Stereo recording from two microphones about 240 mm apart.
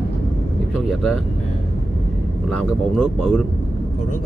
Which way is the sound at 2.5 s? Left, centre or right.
Centre.